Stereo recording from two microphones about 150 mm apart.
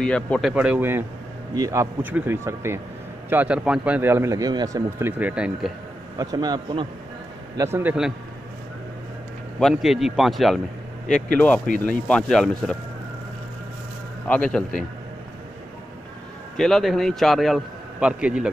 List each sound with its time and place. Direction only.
0.0 s speech: 5° left (ahead or behind)
6.1 s a man's voice: 25° right (ahead or behind)
7.5 s speech: 20° right (ahead or behind)
9.6 s a man's voice: centre (ahead or behind)
14.2 s a man's voice: 10° left (ahead or behind)
16.5 s speech: 5° left (ahead or behind)